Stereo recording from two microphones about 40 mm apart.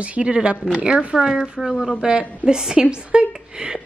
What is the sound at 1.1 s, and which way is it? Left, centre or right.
Speech, centre.